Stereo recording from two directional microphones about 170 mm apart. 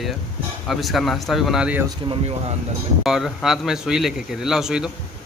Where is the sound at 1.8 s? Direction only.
30° right (ahead or behind).